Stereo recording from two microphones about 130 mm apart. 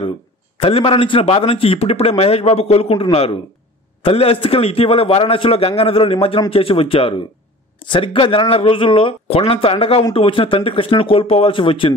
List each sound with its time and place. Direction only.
0.6 s a man's voice: 45° left (ahead or behind)